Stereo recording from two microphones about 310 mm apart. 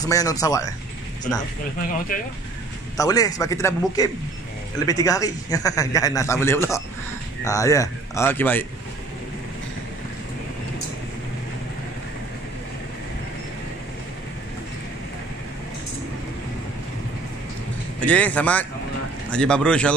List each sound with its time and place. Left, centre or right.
0.0 s speech: centre
1.8 s speech: left
3.0 s speech: centre
18.0 s speech: centre